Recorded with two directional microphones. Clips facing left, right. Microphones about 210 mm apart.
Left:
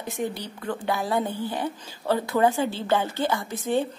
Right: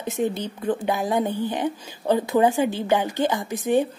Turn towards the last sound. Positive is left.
turn(degrees=-15)  # may be behind; listen again after turning